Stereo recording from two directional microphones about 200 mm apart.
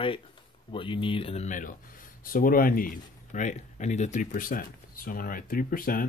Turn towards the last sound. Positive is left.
turn(degrees=45)  # may be behind; listen again after turning